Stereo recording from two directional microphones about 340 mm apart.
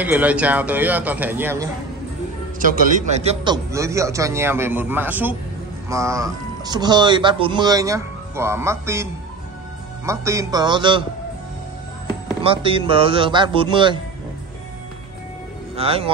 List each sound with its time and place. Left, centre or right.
0.0 s speech: centre
2.6 s speech: right
12.4 s speech: centre
15.7 s speech: centre